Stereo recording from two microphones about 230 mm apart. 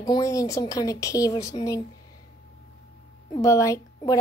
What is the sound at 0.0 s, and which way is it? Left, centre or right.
Speech, centre.